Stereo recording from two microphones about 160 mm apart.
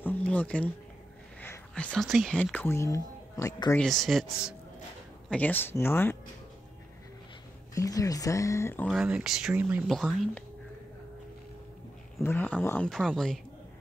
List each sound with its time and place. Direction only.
0.0 s a sound: 10° left (ahead or behind)
1.4 s speech: 10° left (ahead or behind)
3.7 s speech: centre (ahead or behind)
5.3 s speech: 10° left (ahead or behind)
7.7 s speech: 20° left (ahead or behind)
8.8 s speech: 5° right (ahead or behind)
12.2 s speech: 15° left (ahead or behind)